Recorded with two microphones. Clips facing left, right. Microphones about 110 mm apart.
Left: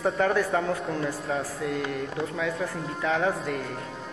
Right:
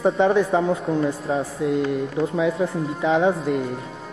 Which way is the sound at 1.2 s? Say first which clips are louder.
Right 5 dB; centre (ahead or behind).